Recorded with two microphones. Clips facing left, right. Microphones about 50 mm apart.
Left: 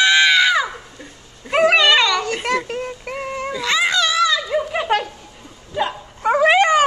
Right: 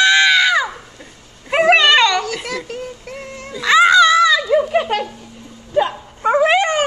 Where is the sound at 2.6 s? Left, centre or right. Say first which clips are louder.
Left 2 dB; left.